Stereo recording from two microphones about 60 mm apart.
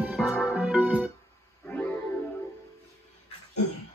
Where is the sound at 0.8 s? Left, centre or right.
Right.